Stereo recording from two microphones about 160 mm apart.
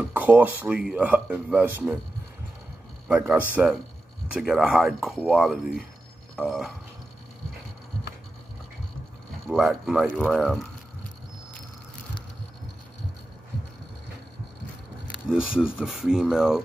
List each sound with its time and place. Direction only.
0.0 s speech: 10° right (ahead or behind)
3.1 s speech: 5° right (ahead or behind)
9.5 s speech: centre (ahead or behind)
15.2 s speech: 5° right (ahead or behind)